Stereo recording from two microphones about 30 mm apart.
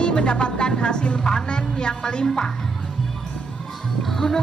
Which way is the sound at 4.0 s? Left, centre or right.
Centre.